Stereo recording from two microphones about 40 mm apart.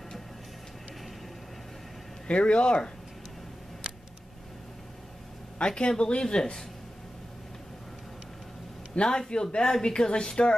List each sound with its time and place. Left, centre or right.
2.2 s speech: left
5.6 s speech: left
8.9 s a man's voice: centre